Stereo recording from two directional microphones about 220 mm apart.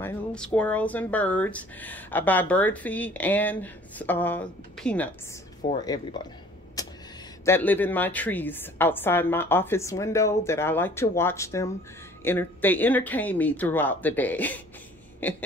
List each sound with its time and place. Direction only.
0.0 s speech: 5° left (ahead or behind)
5.7 s speech: 20° left (ahead or behind)
6.8 s a sound: 15° left (ahead or behind)
7.4 s speech: 10° left (ahead or behind)